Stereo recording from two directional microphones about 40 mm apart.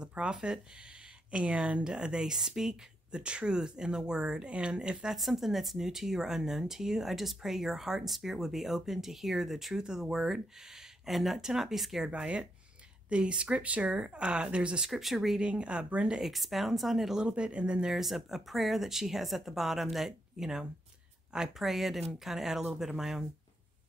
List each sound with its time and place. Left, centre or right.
0.1 s speech: right
3.2 s speech: right
5.1 s speech: centre
9.8 s speech: centre
12.1 s speech: right
14.9 s speech: centre
15.4 s speech: right
16.2 s speech: centre
17.2 s speech: right
17.9 s speech: centre